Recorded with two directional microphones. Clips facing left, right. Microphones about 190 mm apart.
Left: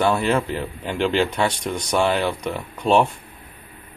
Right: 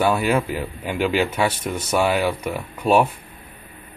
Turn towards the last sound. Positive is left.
turn(degrees=-5)  # may be behind; listen again after turning